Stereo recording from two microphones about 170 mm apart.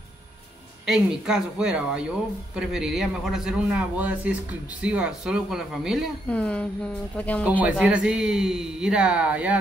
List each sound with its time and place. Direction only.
0.8 s a woman's voice: 5° right (ahead or behind)
7.6 s speech: 5° right (ahead or behind)